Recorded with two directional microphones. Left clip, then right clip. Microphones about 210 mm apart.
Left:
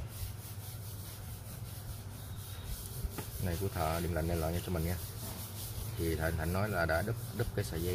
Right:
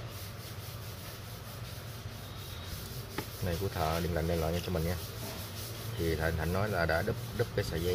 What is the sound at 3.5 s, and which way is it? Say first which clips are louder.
Speech: right 2 dB; 15° left (ahead or behind).